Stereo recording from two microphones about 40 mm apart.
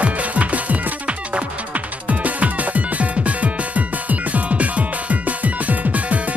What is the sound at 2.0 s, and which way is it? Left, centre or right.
Music, right.